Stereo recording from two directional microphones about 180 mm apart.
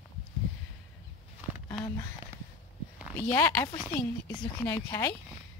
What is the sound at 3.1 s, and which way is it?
Speech, 15° left (ahead or behind).